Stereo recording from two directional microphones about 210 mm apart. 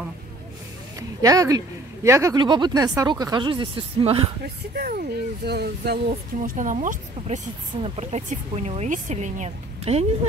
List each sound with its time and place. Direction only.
0.9 s a sound: 15° right (ahead or behind)
2.0 s a woman's voice: 15° right (ahead or behind)
4.7 s speech: 45° right (ahead or behind)
6.4 s speech: 40° right (ahead or behind)